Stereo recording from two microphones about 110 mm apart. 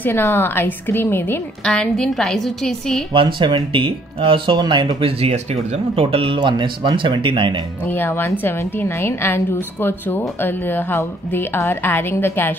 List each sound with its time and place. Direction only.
0.0 s a woman's voice: 20° left (ahead or behind)
1.6 s a woman's voice: 10° left (ahead or behind)
3.1 s speech: 50° right (ahead or behind)
5.2 s speech: 85° right; by 7.6 s 50° right (ahead or behind)
7.9 s a woman's voice: 20° left (ahead or behind)